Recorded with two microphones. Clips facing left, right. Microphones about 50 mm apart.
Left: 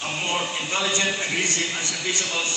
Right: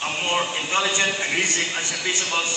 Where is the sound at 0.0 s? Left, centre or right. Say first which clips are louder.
Right 3 dB; right.